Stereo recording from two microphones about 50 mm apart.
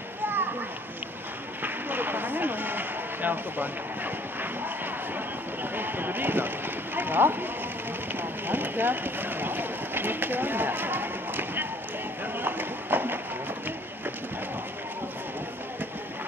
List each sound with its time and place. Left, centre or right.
1.6 s a sound: right
5.1 s speech: right
12.4 s run: right